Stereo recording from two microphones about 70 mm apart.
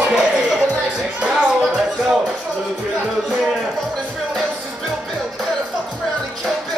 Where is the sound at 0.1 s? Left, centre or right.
Centre.